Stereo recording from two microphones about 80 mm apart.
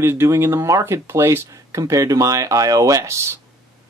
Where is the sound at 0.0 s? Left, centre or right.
Right.